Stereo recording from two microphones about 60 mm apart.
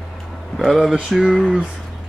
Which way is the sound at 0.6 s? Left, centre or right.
Centre.